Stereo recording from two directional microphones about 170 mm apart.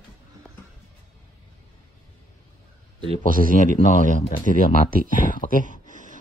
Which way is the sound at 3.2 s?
55° right (ahead or behind).